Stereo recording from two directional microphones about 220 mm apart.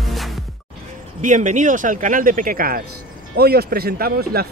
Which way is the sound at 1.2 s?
35° right (ahead or behind).